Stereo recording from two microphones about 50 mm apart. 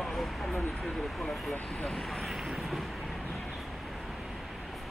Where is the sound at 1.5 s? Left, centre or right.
Left.